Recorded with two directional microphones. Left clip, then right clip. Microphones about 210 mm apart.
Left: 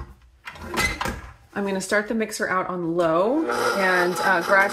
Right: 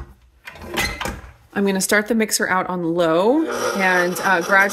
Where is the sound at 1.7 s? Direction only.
60° right (ahead or behind).